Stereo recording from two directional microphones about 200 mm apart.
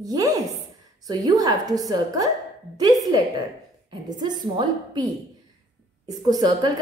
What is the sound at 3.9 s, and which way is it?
A woman's voice, 20° right (ahead or behind).